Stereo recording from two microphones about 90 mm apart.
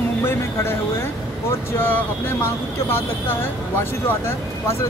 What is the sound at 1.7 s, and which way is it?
Music, 20° left (ahead or behind).